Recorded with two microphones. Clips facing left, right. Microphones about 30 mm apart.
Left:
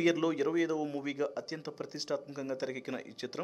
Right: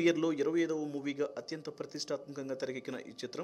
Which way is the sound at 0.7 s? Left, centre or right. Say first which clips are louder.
Left 2 dB; left.